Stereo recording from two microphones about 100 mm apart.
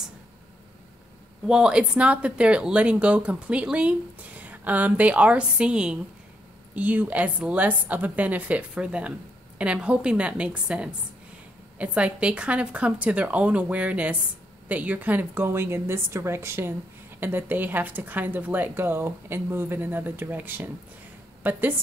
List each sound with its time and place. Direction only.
1.4 s a woman's voice: 5° right (ahead or behind)